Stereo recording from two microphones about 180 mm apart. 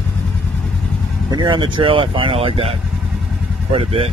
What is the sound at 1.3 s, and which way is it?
Speech, 25° right (ahead or behind).